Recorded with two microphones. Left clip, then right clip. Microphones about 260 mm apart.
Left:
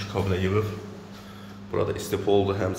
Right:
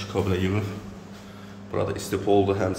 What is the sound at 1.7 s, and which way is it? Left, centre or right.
Speech, centre.